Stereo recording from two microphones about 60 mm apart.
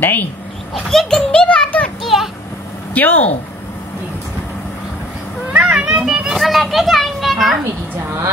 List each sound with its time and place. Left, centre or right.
0.0 s speech: left
0.8 s a child's voice: centre
1.4 s music: centre
2.1 s vehicle: centre
2.9 s speech: left
5.5 s children playing: right
6.0 s children playing: centre